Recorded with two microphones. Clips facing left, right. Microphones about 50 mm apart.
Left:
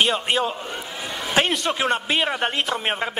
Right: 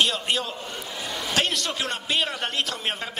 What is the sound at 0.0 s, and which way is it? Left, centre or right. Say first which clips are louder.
A man's voice: left 4 dB; left.